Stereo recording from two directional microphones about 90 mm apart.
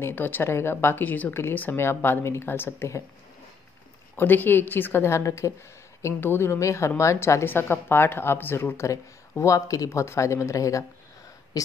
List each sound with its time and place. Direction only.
0.0 s a woman's voice: 25° left (ahead or behind)
4.2 s a woman's voice: 20° left (ahead or behind); by 10.9 s 40° left (ahead or behind)
11.6 s a sound: 40° left (ahead or behind)